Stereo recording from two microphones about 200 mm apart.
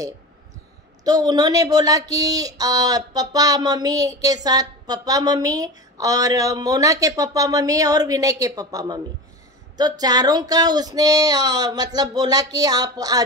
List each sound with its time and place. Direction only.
1.0 s speech: 20° right (ahead or behind)